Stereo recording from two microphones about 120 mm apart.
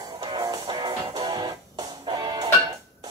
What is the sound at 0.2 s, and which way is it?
Music, 30° right (ahead or behind).